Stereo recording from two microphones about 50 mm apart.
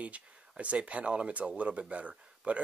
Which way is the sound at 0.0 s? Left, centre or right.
Right.